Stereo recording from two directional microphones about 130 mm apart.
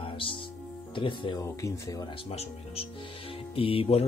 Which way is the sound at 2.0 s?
45° left (ahead or behind).